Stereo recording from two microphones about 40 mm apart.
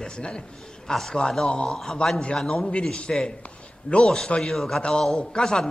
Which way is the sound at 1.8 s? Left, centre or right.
Centre.